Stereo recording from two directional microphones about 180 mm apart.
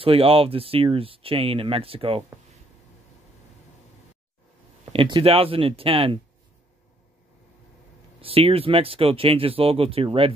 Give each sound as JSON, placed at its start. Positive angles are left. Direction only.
{"t": 0.0, "sound": "speech", "side_deg": -30}
{"t": 4.9, "sound": "speech", "side_deg": -30}
{"t": 8.2, "sound": "speech", "side_deg": -30}